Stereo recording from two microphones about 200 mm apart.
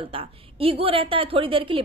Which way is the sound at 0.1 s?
30° right (ahead or behind).